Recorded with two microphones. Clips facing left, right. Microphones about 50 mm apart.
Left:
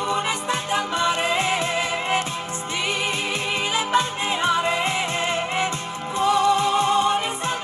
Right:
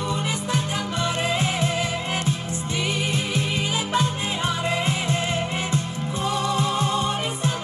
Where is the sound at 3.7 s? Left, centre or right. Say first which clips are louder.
Left 4 dB; left.